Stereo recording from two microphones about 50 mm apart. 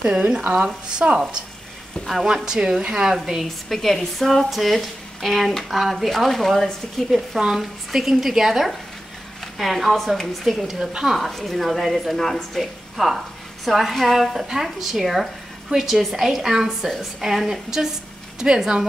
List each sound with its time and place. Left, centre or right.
0.0 s a woman's voice: centre
3.4 s speech: centre
7.1 s a woman's voice: centre